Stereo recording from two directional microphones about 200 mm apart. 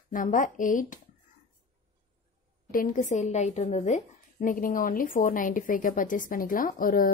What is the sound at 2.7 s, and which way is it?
A woman's voice, 40° left (ahead or behind).